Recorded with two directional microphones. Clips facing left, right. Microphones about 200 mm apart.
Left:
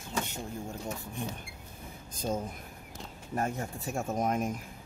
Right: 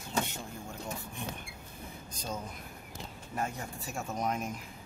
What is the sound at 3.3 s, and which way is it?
Speech, 45° left (ahead or behind).